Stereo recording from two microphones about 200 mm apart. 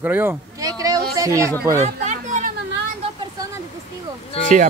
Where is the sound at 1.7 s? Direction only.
35° right (ahead or behind).